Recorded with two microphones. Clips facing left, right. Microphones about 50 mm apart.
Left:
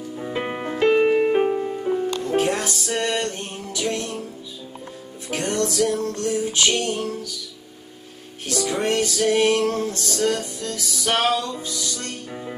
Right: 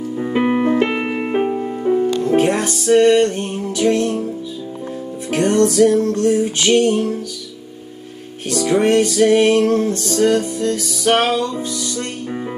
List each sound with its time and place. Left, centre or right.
0.2 s music: right
2.0 s music: right
2.3 s music: centre
2.9 s music: right
5.3 s music: right
8.6 s music: right